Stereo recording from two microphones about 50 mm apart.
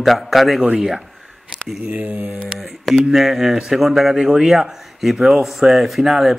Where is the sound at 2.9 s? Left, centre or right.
Centre.